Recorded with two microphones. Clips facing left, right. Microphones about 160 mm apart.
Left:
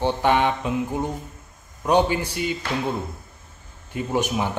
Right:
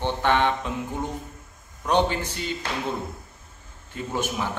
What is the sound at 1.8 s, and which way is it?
Speech, 10° left (ahead or behind).